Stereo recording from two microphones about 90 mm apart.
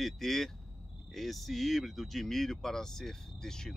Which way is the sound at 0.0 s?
5° left (ahead or behind).